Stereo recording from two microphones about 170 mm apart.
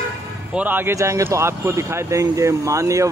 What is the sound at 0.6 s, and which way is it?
Speech, 10° right (ahead or behind).